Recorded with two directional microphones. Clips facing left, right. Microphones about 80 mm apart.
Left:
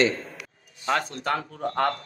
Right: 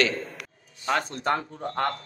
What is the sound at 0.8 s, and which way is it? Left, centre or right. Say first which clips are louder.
Speech: even; centre.